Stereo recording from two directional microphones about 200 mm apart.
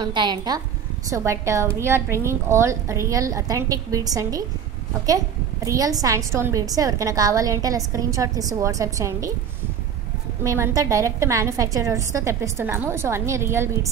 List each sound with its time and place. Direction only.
0.0 s a woman's voice: 20° right (ahead or behind)
10.4 s a woman's voice: 15° right (ahead or behind)